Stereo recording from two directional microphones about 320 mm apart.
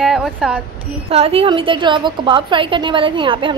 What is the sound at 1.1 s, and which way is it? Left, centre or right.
A woman's voice, centre.